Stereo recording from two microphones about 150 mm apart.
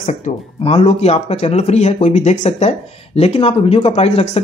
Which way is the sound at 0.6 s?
40° left (ahead or behind).